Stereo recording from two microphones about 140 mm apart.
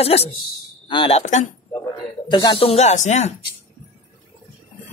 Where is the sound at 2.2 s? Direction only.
35° left (ahead or behind); by 3.3 s 55° left (ahead or behind).